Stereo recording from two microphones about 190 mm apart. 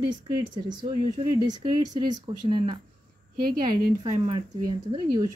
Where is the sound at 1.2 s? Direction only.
20° right (ahead or behind).